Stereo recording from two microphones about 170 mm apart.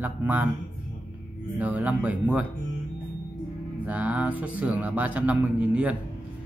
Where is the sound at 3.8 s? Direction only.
10° right (ahead or behind).